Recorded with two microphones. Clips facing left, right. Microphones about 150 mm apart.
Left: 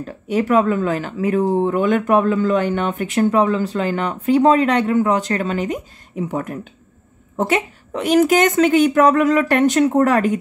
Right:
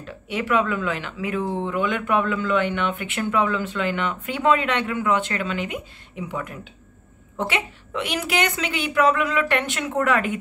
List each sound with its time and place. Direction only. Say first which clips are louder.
0.0 s a woman's voice: left 8 dB; 40° left (ahead or behind)